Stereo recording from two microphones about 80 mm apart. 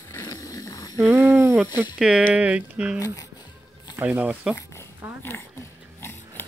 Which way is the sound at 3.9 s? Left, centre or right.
Left.